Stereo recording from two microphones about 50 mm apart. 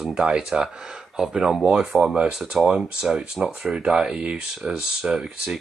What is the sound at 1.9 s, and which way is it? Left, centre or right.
Speech, centre.